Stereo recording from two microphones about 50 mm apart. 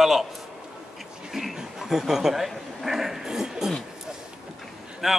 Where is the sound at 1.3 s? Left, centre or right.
Centre.